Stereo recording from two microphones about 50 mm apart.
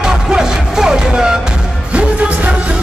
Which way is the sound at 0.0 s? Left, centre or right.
Centre.